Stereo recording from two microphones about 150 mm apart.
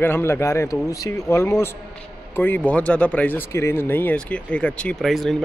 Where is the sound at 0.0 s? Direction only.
15° left (ahead or behind).